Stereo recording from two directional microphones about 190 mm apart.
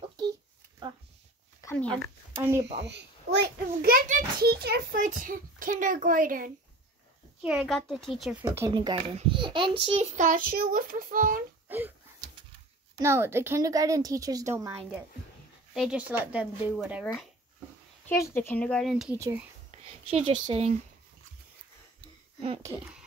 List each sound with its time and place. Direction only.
1.6 s a sound: 10° left (ahead or behind)
2.3 s speech: 10° right (ahead or behind)
2.8 s a child's voice: 60° right (ahead or behind)
7.4 s speech: centre (ahead or behind)
8.5 s a child's voice: 20° right (ahead or behind); by 11.4 s 45° right (ahead or behind)
13.0 s a woman's voice: 15° right (ahead or behind)
15.7 s a woman's voice: 5° right (ahead or behind)
18.0 s speech: 10° left (ahead or behind)
19.1 s a woman's voice: 15° right (ahead or behind)
19.7 s a sound: 30° right (ahead or behind)
20.4 s a child's voice: 30° right (ahead or behind)